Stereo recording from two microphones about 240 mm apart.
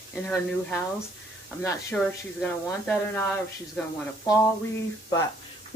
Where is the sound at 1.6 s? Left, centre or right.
Centre.